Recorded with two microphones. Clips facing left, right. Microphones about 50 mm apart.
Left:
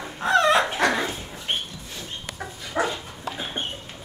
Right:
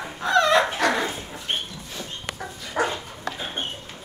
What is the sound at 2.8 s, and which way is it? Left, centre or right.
Dog, centre.